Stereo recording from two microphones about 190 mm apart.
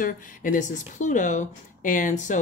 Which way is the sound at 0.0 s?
45° left (ahead or behind).